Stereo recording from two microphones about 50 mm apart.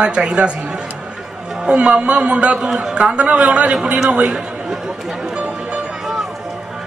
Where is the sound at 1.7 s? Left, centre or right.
Right.